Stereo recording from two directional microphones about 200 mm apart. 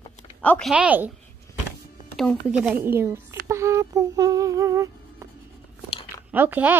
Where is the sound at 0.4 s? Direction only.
5° left (ahead or behind).